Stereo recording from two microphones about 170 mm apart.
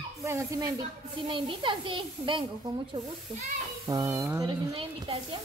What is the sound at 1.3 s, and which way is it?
A child's voice, 30° right (ahead or behind).